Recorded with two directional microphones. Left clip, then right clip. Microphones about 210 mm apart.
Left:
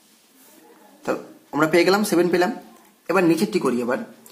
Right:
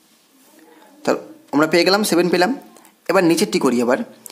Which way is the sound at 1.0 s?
40° right (ahead or behind).